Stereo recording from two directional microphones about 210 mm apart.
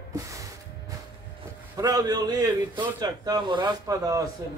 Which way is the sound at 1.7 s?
15° right (ahead or behind).